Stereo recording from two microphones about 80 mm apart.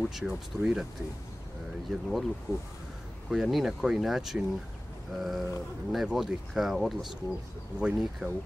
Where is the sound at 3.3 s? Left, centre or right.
Centre.